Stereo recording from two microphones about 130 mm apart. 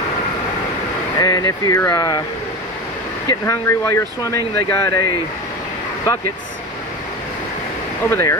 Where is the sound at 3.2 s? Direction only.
20° left (ahead or behind).